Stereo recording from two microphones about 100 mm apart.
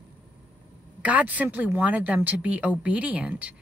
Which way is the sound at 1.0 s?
15° right (ahead or behind).